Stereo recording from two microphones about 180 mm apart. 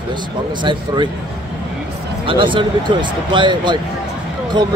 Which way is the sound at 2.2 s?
30° right (ahead or behind).